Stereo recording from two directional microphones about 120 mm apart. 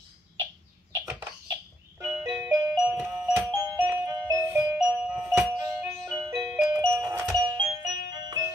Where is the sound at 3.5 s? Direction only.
30° right (ahead or behind).